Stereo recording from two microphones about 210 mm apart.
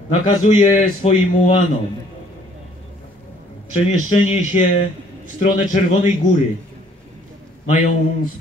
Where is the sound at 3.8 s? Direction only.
30° left (ahead or behind).